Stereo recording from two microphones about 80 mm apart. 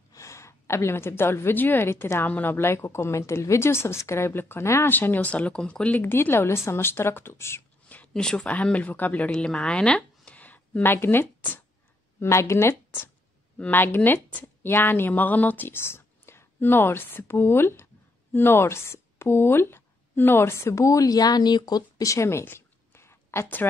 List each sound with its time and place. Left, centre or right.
0.1 s a woman's voice: left
4.9 s speech: left
8.1 s speech: centre; by 11.6 s left
12.2 s a woman's voice: left
22.0 s a sound: left